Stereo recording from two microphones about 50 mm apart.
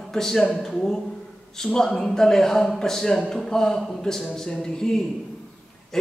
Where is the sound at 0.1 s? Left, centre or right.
Centre.